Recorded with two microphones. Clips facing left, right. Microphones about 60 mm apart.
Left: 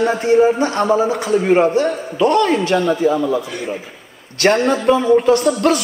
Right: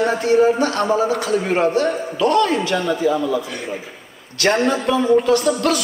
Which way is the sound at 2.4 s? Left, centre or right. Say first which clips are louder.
Left 2 dB; left.